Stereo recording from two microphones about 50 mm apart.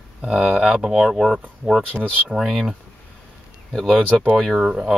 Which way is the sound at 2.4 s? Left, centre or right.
Centre.